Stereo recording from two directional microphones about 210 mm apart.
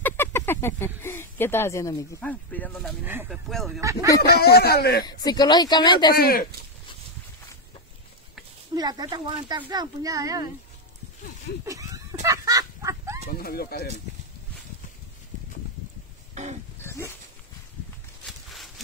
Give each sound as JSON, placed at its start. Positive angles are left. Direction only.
{"t": 0.0, "sound": "speech", "side_deg": 10}
{"t": 3.0, "sound": "speech", "side_deg": -10}
{"t": 4.2, "sound": "speech", "side_deg": 50}
{"t": 5.0, "sound": "speech", "side_deg": 20}
{"t": 6.1, "sound": "speech", "side_deg": 45}
{"t": 8.7, "sound": "speech", "side_deg": -20}
{"t": 11.6, "sound": "fowl", "side_deg": -15}
{"t": 13.3, "sound": "speech", "side_deg": 45}
{"t": 16.4, "sound": "a sound", "side_deg": -35}
{"t": 16.8, "sound": "a sound", "side_deg": 10}
{"t": 18.2, "sound": "a sound", "side_deg": 0}